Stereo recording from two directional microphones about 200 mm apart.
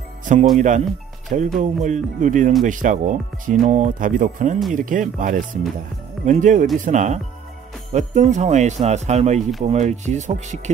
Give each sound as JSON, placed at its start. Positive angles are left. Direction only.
{"t": 0.2, "sound": "music", "side_deg": -40}
{"t": 0.6, "sound": "speech", "side_deg": -40}